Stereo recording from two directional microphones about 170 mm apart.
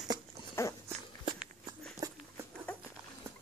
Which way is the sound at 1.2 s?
25° right (ahead or behind).